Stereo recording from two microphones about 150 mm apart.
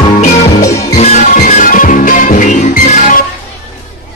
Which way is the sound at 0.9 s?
45° left (ahead or behind).